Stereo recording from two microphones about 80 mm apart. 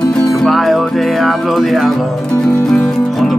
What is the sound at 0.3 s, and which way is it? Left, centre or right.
Music, centre.